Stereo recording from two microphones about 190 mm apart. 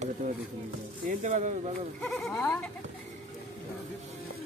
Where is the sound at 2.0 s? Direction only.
Centre (ahead or behind).